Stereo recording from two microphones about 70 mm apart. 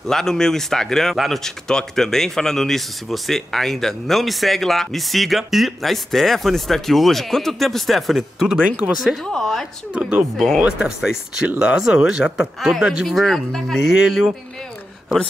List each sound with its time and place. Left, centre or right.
0.0 s a woman's voice: centre
9.9 s speech: centre
10.3 s speech: centre
10.8 s speech: centre
13.7 s speech: centre